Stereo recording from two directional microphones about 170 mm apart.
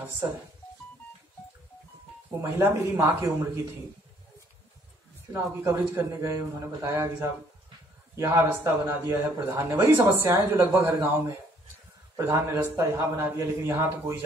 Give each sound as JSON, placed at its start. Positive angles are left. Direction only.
{"t": 0.2, "sound": "speech", "side_deg": -15}
{"t": 2.5, "sound": "speech", "side_deg": -15}
{"t": 5.3, "sound": "speech", "side_deg": -15}